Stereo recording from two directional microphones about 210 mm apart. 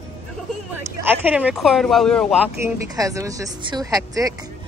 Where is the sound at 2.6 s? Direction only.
15° right (ahead or behind).